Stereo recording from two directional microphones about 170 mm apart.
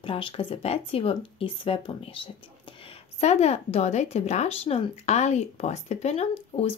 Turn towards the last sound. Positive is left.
turn(degrees=35)  # may be behind; listen again after turning